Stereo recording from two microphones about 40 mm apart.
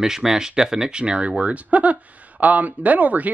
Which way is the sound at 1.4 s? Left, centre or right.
Right.